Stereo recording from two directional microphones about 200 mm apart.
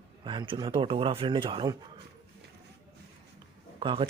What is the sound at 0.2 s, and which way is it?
Speech, 25° right (ahead or behind).